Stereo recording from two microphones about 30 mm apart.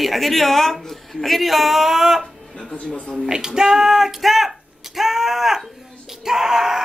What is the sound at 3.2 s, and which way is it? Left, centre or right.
Speech, right.